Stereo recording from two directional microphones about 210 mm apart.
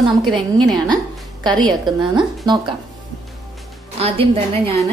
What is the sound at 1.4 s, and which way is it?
A woman's voice, 20° right (ahead or behind).